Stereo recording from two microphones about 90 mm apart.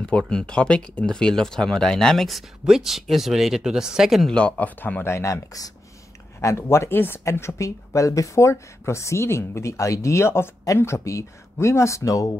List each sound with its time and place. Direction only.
0.3 s speech: 10° left (ahead or behind)
4.3 s speech: 10° left (ahead or behind); by 12.4 s 40° left (ahead or behind)